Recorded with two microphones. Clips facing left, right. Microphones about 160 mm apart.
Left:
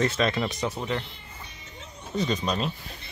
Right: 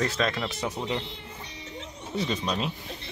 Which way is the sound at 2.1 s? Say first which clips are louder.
Left 2 dB; 5° right (ahead or behind).